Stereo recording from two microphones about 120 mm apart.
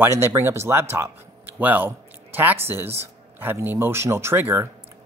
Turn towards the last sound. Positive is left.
turn(degrees=-20)  # may be behind; listen again after turning